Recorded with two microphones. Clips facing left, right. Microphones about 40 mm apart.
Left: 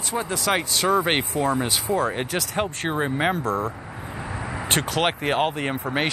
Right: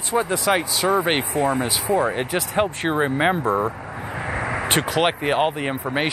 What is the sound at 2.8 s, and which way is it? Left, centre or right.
Speech, centre.